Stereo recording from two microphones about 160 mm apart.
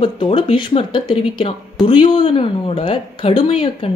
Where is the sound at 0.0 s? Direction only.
30° left (ahead or behind).